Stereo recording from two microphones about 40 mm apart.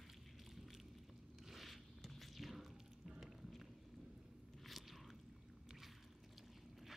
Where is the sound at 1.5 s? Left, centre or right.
Centre.